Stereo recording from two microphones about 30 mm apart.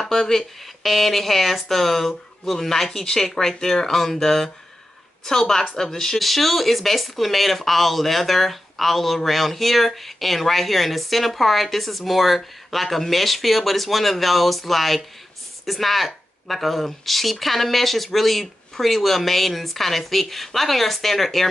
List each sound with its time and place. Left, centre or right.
0.0 s speech: centre
6.1 s speech: centre